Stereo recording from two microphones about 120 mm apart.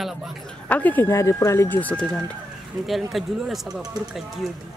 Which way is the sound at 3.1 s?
Centre (ahead or behind).